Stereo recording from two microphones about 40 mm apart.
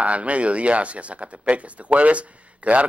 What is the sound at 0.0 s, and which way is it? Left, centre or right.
Speech, right.